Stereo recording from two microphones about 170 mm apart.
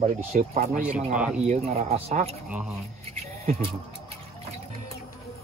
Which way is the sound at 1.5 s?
40° right (ahead or behind).